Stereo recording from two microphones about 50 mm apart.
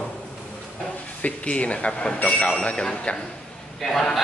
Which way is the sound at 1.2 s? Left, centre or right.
Left.